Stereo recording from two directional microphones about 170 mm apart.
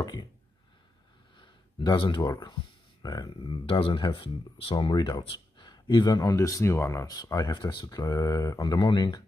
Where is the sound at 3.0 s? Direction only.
25° left (ahead or behind).